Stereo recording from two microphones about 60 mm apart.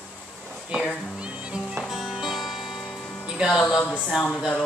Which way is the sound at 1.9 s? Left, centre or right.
Centre.